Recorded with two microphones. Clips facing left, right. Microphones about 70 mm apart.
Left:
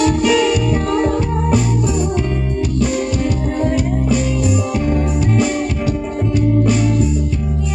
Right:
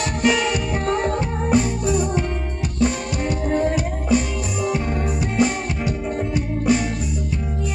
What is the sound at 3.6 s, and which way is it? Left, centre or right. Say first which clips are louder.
Music: left 4 dB; right.